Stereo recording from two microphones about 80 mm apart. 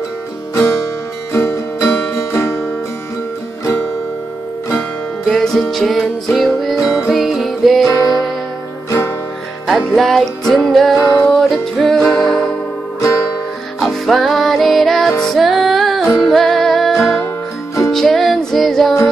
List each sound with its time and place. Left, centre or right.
1.3 s music: left
5.2 s music: centre
6.8 s music: left
7.1 s music: centre
9.7 s music: centre
13.7 s music: centre